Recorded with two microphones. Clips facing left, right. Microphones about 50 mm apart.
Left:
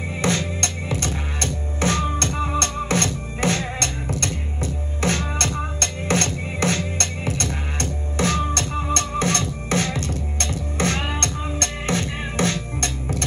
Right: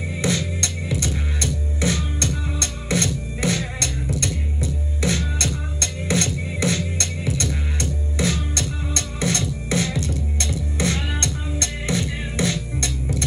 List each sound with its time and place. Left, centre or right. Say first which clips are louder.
0.2 s music: left 1 dB; left